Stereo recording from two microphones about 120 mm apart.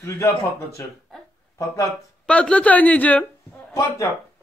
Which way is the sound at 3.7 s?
25° left (ahead or behind).